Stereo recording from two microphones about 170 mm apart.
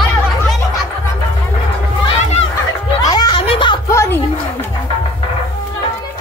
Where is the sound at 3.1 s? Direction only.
25° left (ahead or behind).